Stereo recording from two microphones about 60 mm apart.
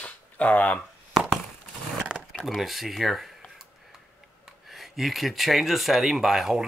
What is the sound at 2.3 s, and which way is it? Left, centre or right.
Speech, centre.